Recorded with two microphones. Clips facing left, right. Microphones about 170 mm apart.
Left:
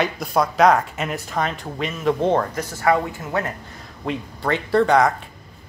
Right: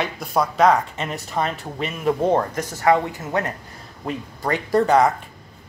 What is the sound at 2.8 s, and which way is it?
Speech, 25° right (ahead or behind).